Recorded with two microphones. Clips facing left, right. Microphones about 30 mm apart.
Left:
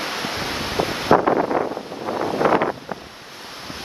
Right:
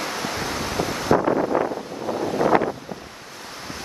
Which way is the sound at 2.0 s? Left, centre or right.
Left.